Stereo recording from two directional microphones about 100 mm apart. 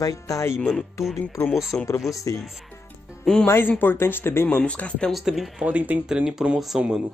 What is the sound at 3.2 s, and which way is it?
Speech, 5° left (ahead or behind).